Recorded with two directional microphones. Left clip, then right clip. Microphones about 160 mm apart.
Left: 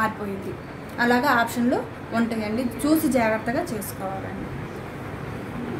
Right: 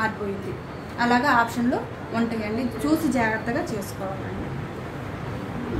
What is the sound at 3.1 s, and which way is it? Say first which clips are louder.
Speech: left 2 dB; 90° left.